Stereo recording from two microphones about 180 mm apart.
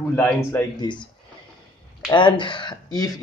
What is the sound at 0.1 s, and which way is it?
Speech, 10° left (ahead or behind).